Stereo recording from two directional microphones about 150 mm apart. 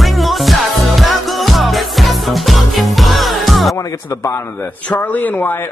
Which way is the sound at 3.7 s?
20° left (ahead or behind).